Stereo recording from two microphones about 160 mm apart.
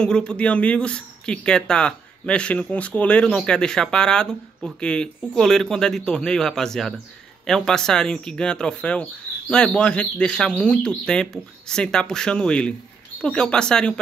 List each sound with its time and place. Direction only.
0.0 s speech: 5° left (ahead or behind)